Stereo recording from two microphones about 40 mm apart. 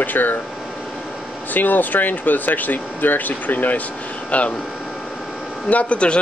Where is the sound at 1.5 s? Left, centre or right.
Left.